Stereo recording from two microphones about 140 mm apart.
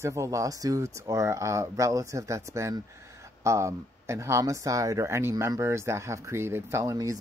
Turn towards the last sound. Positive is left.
turn(degrees=-25)  # may be behind; listen again after turning